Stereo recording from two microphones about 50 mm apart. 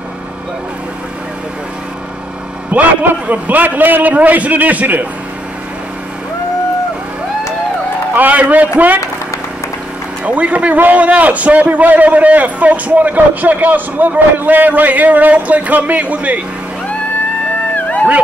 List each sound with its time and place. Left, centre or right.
2.7 s a man's voice: right
8.1 s a man's voice: right
10.2 s a man's voice: right
17.7 s a sound: left